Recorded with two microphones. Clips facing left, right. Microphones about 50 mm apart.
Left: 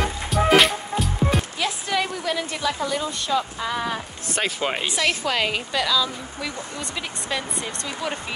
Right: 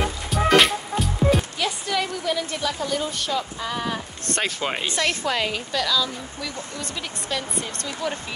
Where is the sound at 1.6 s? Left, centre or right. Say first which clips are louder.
Left 1 dB; centre.